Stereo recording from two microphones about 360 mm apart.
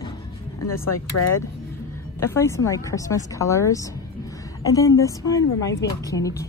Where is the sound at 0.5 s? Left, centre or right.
Left.